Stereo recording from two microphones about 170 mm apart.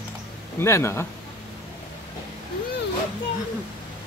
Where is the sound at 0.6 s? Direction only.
15° left (ahead or behind).